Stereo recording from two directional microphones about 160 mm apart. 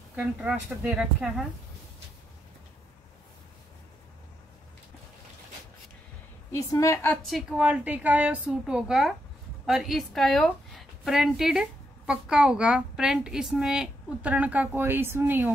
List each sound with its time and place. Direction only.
0.1 s a woman's voice: 5° right (ahead or behind)
6.5 s a woman's voice: 20° left (ahead or behind)
7.2 s a woman's voice: 5° right (ahead or behind)